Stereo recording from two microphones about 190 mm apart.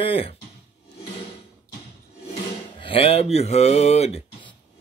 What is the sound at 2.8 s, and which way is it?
Speech, 30° left (ahead or behind).